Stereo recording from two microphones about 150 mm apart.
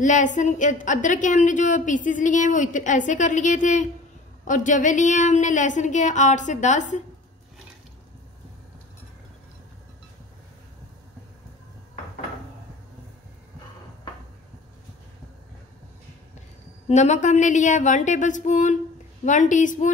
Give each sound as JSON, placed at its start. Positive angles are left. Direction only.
{"t": 0.0, "sound": "a woman's voice", "side_deg": 55}
{"t": 16.8, "sound": "a woman's voice", "side_deg": 50}